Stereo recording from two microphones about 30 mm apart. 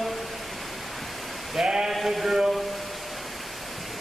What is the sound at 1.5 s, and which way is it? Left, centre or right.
Sheep, centre.